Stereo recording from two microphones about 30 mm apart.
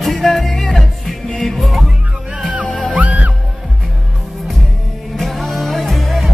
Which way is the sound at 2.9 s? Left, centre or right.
Right.